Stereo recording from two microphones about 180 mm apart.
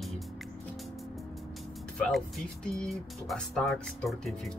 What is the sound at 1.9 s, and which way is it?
Speech, centre (ahead or behind).